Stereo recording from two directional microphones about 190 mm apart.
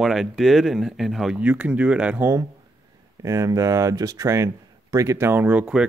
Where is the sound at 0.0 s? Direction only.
Centre (ahead or behind).